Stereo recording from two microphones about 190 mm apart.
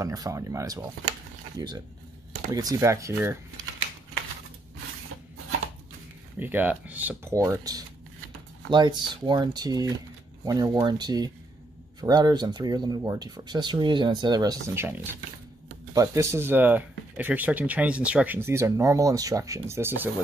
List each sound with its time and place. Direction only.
0.0 s speech: 15° right (ahead or behind)
2.5 s speech: 20° right (ahead or behind)
6.4 s speech: 10° right (ahead or behind)